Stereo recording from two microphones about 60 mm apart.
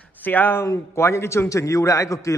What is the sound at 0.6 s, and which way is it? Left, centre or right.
A man's voice, left.